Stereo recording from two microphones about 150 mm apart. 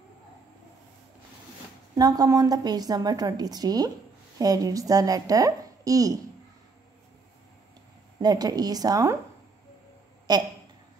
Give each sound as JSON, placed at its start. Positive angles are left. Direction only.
{"t": 2.0, "sound": "a woman's voice", "side_deg": -25}
{"t": 8.2, "sound": "a woman's voice", "side_deg": -25}
{"t": 10.3, "sound": "a woman's voice", "side_deg": -25}